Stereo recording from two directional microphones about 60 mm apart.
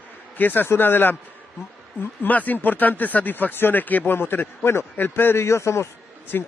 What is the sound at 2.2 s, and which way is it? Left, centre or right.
Speech, left.